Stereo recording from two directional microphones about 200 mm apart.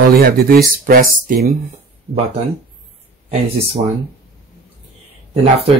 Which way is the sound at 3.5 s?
30° right (ahead or behind).